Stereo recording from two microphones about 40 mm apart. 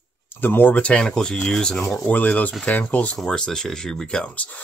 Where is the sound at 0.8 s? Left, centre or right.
Left.